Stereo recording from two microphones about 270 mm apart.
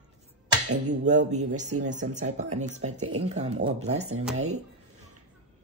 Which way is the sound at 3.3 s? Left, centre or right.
Right.